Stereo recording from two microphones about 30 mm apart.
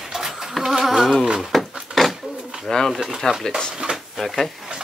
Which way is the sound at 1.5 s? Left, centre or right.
Centre.